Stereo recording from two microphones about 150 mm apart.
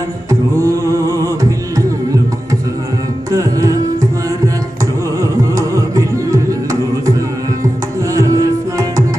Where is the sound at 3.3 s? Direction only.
20° right (ahead or behind).